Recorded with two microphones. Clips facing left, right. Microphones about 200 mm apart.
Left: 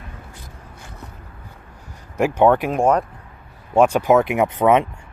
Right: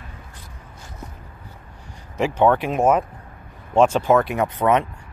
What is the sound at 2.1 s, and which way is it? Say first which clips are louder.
Speech: left 2 dB; 10° left (ahead or behind).